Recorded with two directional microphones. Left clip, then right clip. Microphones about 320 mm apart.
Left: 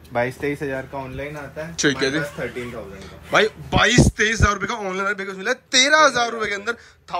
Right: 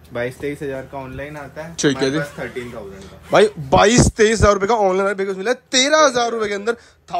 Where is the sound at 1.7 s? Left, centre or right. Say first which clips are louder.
Right 2 dB; centre.